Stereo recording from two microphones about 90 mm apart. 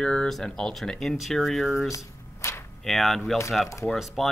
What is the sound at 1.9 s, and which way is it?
Shuffling cards, 30° left (ahead or behind).